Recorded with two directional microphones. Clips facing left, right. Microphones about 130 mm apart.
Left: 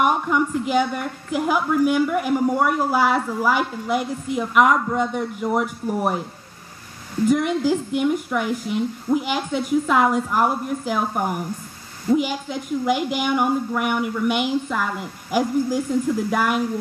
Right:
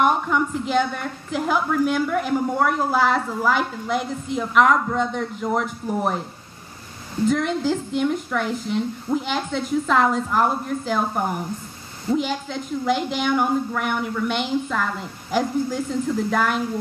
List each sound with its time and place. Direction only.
0.0 s speech: 5° left (ahead or behind)
7.2 s speech: 10° left (ahead or behind)